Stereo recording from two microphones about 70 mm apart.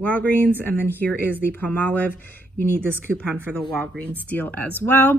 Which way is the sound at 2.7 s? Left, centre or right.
Right.